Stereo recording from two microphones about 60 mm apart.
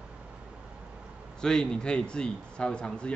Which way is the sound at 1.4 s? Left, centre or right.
Centre.